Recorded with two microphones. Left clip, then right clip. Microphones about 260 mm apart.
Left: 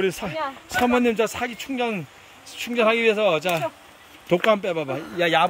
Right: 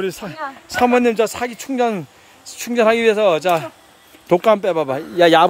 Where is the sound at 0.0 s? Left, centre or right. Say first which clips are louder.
Even; centre.